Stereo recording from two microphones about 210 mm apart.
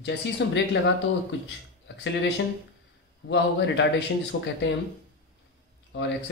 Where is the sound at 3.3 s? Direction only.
60° left (ahead or behind).